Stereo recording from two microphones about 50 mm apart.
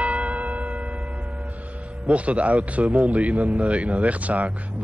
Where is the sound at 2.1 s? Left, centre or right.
Right.